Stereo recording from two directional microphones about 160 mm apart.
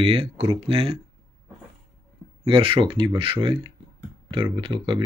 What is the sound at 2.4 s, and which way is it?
Speech, 35° right (ahead or behind).